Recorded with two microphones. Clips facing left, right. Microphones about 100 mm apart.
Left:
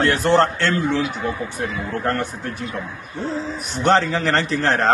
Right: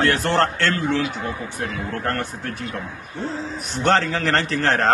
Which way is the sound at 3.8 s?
5° left (ahead or behind).